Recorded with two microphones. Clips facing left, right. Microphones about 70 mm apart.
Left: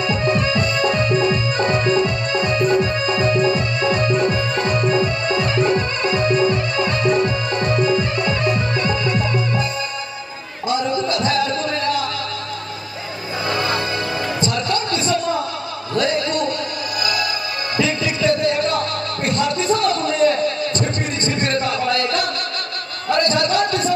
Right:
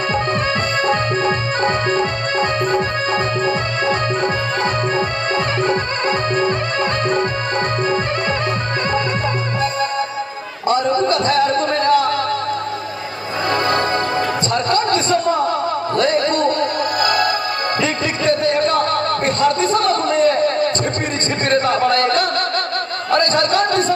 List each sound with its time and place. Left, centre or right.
0.1 s music: right
10.7 s music: right
13.5 s music: right
14.4 s a sound: right
17.0 s music: right
21.4 s a sound: right
23.0 s music: right